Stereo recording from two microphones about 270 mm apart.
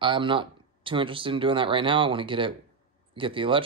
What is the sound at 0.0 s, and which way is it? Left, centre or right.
Speech, centre.